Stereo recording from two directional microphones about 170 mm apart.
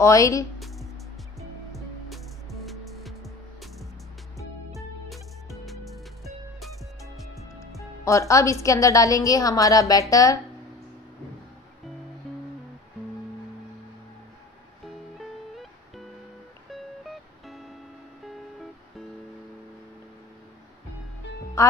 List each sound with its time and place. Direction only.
0.0 s a woman's voice: 20° left (ahead or behind)
1.7 s music: centre (ahead or behind)
5.7 s music: centre (ahead or behind)
8.0 s a woman's voice: 20° left (ahead or behind)
16.7 s music: centre (ahead or behind)
21.6 s music: 20° left (ahead or behind)